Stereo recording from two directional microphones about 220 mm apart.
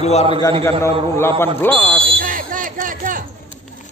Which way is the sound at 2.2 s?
40° right (ahead or behind).